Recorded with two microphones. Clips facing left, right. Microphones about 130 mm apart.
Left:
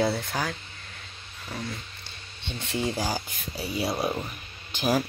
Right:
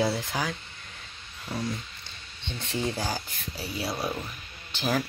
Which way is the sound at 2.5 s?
15° left (ahead or behind).